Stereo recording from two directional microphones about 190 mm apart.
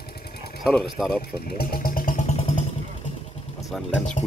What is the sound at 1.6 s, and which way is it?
Speech, 50° left (ahead or behind).